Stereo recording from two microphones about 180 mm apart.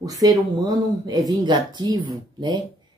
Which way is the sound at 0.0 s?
20° right (ahead or behind).